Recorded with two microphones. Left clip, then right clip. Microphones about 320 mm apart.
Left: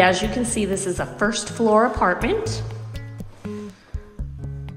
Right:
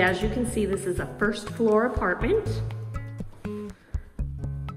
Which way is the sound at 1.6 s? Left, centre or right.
Left.